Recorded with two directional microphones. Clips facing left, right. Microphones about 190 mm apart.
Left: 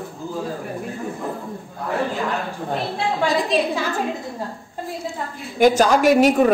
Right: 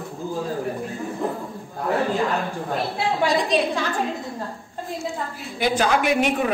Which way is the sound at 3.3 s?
Centre (ahead or behind).